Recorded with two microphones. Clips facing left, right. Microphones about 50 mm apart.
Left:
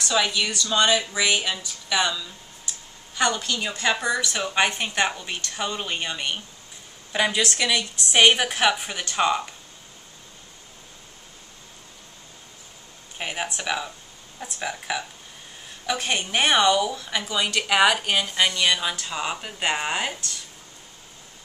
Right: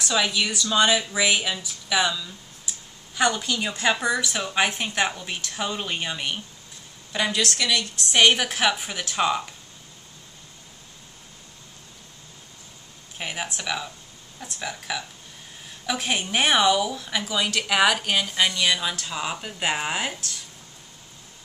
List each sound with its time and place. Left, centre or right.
0.0 s a woman's voice: centre
7.1 s a woman's voice: centre
13.2 s a woman's voice: centre
15.9 s speech: centre